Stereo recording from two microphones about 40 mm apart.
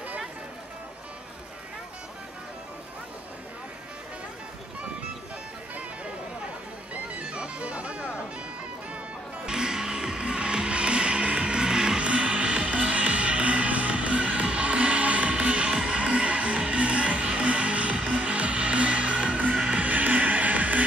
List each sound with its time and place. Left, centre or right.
6.9 s music: right
9.5 s music: centre
19.8 s music: right